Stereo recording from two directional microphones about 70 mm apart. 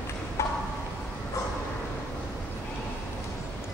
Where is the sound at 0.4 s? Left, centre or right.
Left.